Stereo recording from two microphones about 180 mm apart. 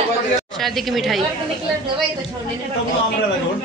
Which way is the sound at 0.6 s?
Centre (ahead or behind).